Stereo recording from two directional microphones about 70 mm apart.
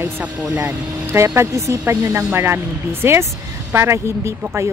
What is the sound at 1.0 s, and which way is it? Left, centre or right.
Speech, right.